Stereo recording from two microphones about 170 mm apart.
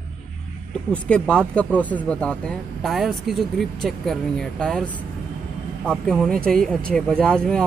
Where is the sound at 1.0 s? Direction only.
5° left (ahead or behind).